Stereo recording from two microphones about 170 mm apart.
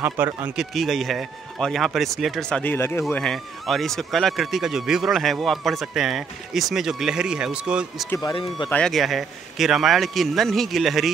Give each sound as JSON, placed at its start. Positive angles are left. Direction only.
{"t": 0.0, "sound": "speech", "side_deg": -10}
{"t": 2.6, "sound": "speech", "side_deg": 10}
{"t": 8.2, "sound": "speech", "side_deg": 25}
{"t": 8.6, "sound": "speech", "side_deg": 5}